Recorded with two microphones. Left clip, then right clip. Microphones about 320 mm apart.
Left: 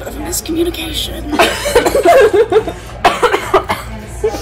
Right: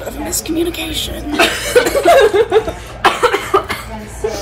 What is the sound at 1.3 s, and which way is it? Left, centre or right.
Cough, left.